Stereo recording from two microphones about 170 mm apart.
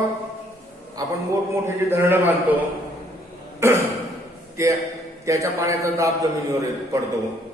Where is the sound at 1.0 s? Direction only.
20° right (ahead or behind).